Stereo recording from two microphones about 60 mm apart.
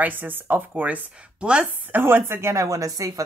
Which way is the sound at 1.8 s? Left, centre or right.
Right.